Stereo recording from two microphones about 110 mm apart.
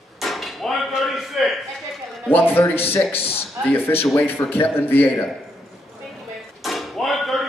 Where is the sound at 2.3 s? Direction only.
20° left (ahead or behind).